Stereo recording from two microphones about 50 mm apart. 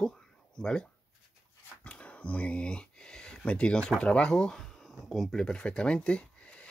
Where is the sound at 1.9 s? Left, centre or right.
Left.